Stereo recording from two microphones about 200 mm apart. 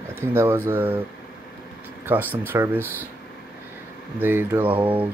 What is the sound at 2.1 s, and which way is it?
Speech, 10° right (ahead or behind).